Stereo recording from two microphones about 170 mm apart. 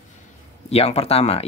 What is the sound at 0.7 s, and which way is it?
Speech, 35° left (ahead or behind).